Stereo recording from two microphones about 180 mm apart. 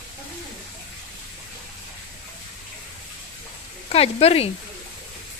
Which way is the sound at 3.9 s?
35° left (ahead or behind).